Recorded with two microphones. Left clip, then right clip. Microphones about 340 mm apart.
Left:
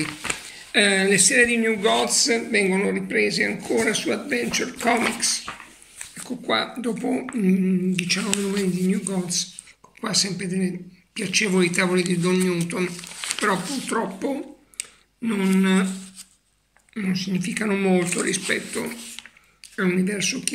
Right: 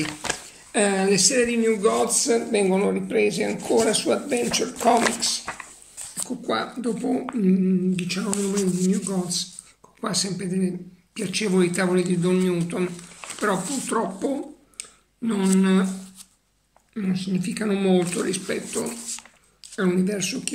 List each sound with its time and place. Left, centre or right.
0.0 s a sound: right
1.3 s a man's voice: right
1.6 s speech: centre
3.9 s speech: right
4.3 s speech: centre
16.9 s speech: centre